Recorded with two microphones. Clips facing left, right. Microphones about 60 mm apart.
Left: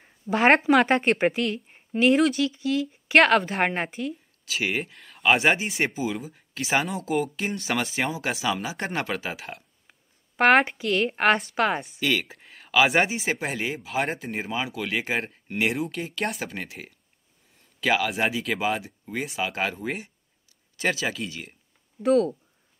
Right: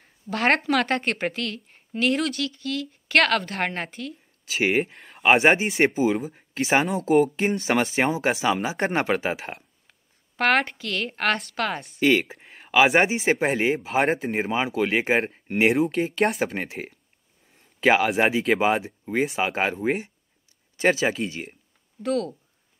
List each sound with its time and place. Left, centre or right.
0.0 s speech: centre
4.5 s speech: right
5.0 s a sound: right
5.3 s speech: right
9.8 s speech: centre
12.0 s a sound: right
12.9 s speech: right
16.3 s speech: right
16.5 s speech: right
22.0 s speech: centre